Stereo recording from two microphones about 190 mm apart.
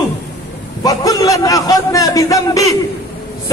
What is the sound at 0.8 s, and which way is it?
A man's voice, 20° left (ahead or behind).